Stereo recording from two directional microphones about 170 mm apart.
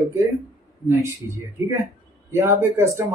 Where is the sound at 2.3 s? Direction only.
15° right (ahead or behind).